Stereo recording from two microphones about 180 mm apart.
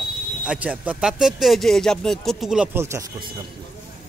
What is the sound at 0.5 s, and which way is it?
Speech, 10° right (ahead or behind).